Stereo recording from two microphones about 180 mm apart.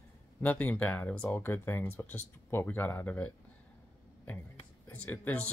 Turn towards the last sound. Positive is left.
turn(degrees=10)  # may be behind; listen again after turning